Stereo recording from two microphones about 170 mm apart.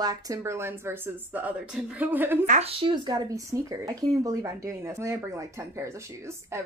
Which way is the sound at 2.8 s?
25° right (ahead or behind).